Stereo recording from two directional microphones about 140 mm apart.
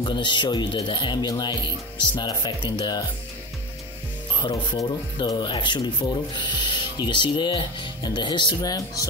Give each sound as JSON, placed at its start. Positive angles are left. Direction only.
{"t": 0.0, "sound": "speech", "side_deg": 35}
{"t": 4.4, "sound": "speech", "side_deg": 25}